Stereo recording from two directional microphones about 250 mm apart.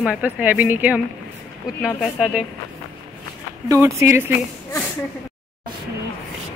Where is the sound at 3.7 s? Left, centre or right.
Centre.